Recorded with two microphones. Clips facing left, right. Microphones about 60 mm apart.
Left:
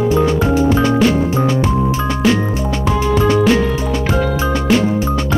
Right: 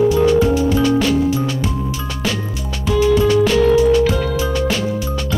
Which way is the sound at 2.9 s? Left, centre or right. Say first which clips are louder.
Right 2 dB; left.